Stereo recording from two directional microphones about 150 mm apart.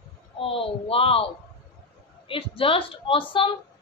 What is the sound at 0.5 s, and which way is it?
Speech, 40° left (ahead or behind).